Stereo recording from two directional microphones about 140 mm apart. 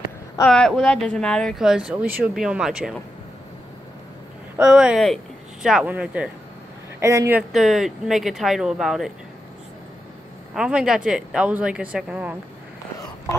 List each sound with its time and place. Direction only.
0.5 s speech: 5° left (ahead or behind)
4.6 s speech: 5° right (ahead or behind)
7.0 s speech: 20° right (ahead or behind)
7.5 s speech: centre (ahead or behind)
10.5 s speech: 5° right (ahead or behind)